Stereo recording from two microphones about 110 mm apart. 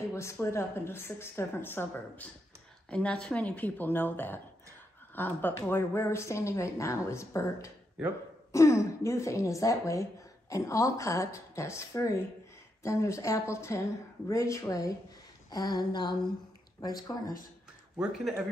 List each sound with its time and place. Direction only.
0.1 s speech: 25° left (ahead or behind)
2.9 s speech: 10° left (ahead or behind); by 17.2 s 35° left (ahead or behind)
17.9 s speech: 5° right (ahead or behind)